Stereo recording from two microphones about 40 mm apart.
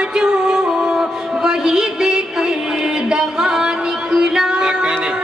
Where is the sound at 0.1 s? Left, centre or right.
Centre.